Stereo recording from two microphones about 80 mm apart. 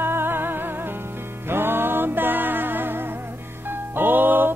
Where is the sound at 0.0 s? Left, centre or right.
Right.